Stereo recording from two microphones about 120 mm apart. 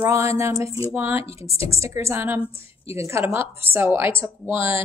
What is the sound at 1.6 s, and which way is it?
A woman's voice, 25° right (ahead or behind).